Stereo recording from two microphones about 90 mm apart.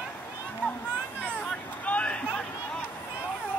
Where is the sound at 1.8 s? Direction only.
15° left (ahead or behind).